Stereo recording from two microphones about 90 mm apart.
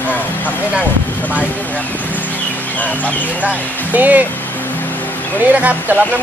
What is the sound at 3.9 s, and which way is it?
Speech, 20° right (ahead or behind).